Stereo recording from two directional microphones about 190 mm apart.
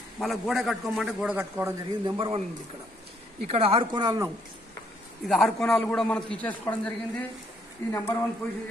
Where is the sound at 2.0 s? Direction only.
25° right (ahead or behind).